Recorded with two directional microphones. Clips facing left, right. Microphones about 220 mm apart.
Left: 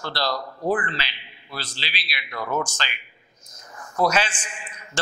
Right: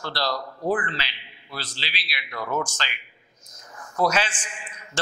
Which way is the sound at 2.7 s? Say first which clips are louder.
Left 1 dB; 15° left (ahead or behind).